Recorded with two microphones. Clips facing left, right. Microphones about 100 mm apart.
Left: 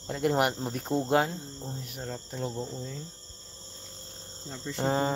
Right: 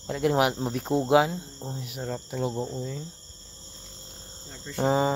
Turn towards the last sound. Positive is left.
turn(degrees=-5)  # may be behind; listen again after turning